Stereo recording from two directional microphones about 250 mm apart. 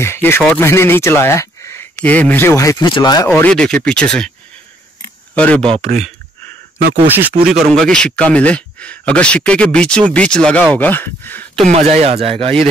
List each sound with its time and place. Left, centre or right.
0.0 s speech: centre
3.3 s speech: centre
5.3 s speech: centre
7.1 s speech: centre
11.7 s speech: right